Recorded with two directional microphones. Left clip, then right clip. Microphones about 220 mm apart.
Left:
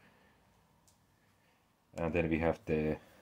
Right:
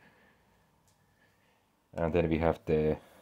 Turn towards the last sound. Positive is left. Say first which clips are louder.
# right 5 dB
turn(degrees=-30)  # may be behind; listen again after turning